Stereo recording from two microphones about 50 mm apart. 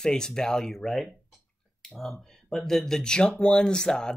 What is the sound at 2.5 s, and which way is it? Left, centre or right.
Speech, centre.